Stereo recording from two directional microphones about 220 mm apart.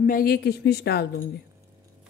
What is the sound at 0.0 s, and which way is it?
Speech, 40° left (ahead or behind).